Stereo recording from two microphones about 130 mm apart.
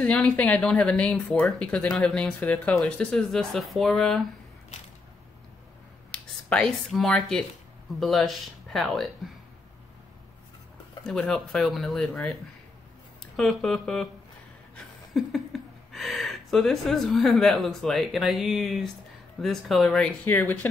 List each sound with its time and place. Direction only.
0.0 s speech: 10° left (ahead or behind)
6.1 s speech: 10° left (ahead or behind)
11.1 s speech: 5° left (ahead or behind)
15.2 s speech: centre (ahead or behind)
20.2 s speech: 15° left (ahead or behind)